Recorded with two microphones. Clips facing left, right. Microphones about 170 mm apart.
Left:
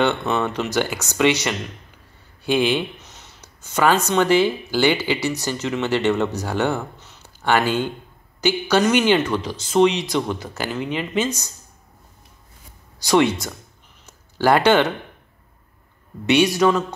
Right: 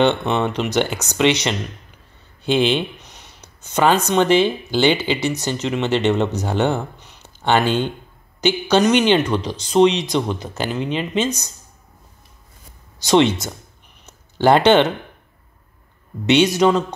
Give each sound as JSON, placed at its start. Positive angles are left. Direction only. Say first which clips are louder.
{"t": 0.0, "sound": "speech", "louder": "right 3 dB", "side_deg": -20}
{"t": 13.0, "sound": "speech", "louder": "right 2 dB", "side_deg": -20}
{"t": 14.0, "sound": "a sound", "louder": "right 3 dB", "side_deg": -25}
{"t": 16.3, "sound": "speech", "louder": "right 2 dB", "side_deg": -20}